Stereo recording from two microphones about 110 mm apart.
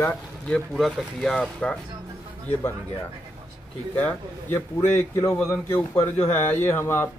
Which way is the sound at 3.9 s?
20° left (ahead or behind).